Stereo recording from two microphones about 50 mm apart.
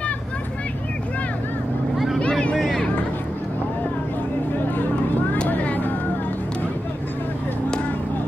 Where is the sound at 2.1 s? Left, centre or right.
Left.